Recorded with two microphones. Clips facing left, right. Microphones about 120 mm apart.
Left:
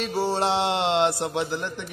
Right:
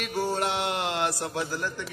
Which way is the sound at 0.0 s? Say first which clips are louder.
Left 4 dB; 30° left (ahead or behind).